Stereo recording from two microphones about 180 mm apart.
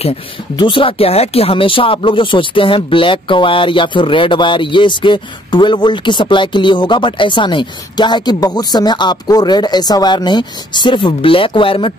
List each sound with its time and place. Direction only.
0.6 s speech: 30° left (ahead or behind)